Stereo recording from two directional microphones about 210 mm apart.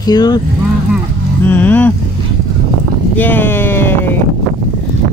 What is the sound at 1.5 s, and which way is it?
Speech, 10° left (ahead or behind).